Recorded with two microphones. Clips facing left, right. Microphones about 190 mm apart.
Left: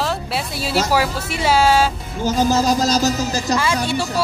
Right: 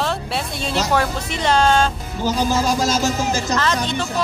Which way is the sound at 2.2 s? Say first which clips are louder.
Left 2 dB; 40° left (ahead or behind).